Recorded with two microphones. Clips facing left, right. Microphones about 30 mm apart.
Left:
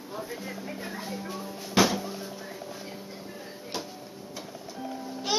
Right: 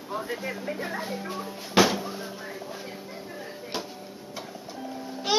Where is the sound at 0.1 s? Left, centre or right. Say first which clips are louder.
Right 5 dB; right.